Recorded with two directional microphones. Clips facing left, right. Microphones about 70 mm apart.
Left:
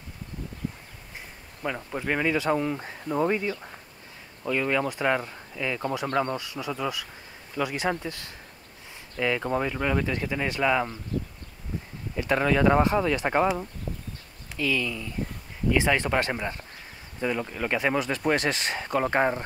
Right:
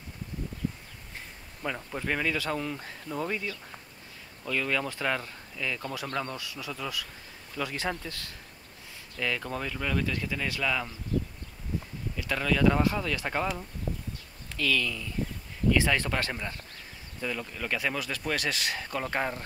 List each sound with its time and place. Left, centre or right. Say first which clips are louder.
1.6 s speech: left 3 dB; centre
12.2 s speech: left 4 dB; left